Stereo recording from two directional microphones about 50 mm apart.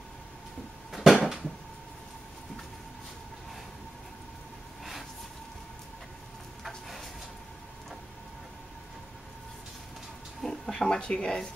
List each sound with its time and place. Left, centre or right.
0.9 s cupboard open or close: centre
6.6 s a sound: centre
10.4 s speech: centre